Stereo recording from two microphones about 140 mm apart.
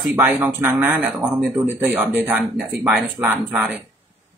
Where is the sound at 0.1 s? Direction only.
15° right (ahead or behind).